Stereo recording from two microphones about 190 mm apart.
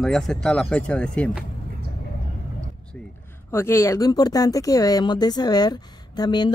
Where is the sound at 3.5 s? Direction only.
15° left (ahead or behind).